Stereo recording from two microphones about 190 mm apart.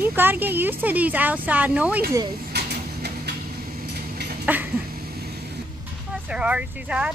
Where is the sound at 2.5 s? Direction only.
60° right (ahead or behind).